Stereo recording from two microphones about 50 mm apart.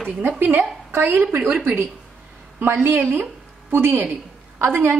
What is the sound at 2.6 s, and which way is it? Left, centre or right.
A woman's voice, right.